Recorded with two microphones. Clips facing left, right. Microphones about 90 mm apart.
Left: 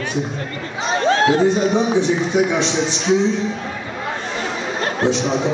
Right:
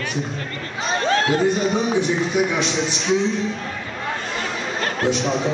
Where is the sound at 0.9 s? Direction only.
20° left (ahead or behind).